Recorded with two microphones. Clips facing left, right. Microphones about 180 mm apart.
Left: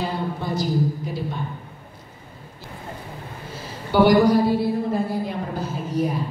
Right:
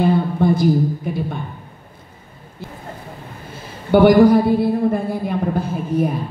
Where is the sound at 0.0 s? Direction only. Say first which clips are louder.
Right 10 dB; 55° right (ahead or behind).